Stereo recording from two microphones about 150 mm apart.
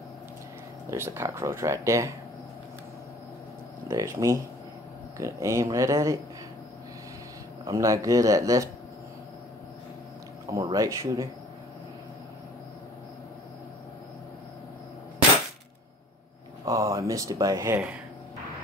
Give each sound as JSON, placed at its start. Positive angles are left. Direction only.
{"t": 0.8, "sound": "speech", "side_deg": -15}
{"t": 3.9, "sound": "speech", "side_deg": -20}
{"t": 7.6, "sound": "speech", "side_deg": -20}
{"t": 10.4, "sound": "speech", "side_deg": -25}
{"t": 16.6, "sound": "speech", "side_deg": -20}